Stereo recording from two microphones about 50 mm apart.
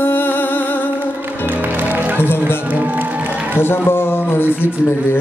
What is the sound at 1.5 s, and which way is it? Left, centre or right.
Music, right.